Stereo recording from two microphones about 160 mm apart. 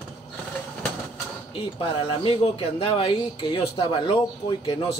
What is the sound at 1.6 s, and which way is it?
Speech, 35° left (ahead or behind).